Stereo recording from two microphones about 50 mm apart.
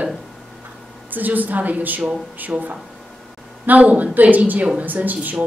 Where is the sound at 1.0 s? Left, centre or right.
Right.